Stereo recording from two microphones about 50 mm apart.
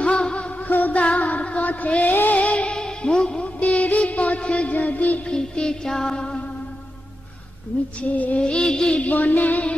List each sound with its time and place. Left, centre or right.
0.0 s music: left
0.7 s music: left
5.3 s music: centre
8.0 s music: left
8.4 s music: centre
9.0 s music: left